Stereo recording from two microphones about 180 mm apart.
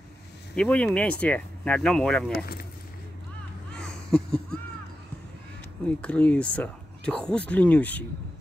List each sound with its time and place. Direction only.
0.6 s speech: 5° left (ahead or behind)
2.3 s speech: 55° left (ahead or behind)
3.7 s a sound: 5° left (ahead or behind)
5.9 s speech: 5° left (ahead or behind)